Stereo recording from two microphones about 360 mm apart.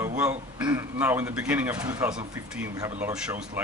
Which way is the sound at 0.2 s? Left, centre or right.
Centre.